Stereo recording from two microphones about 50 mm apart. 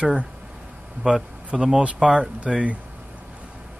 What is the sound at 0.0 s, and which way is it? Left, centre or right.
Speech, right.